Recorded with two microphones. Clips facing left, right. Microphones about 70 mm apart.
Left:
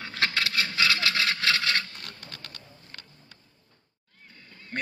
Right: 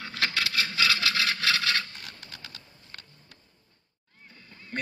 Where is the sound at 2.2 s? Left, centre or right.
Left.